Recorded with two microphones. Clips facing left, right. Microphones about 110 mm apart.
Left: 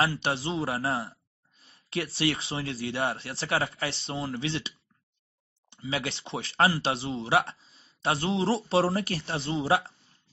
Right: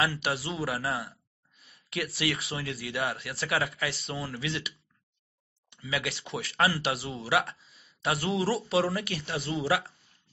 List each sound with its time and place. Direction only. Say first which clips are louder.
0.0 s speech: left 2 dB; 30° left (ahead or behind)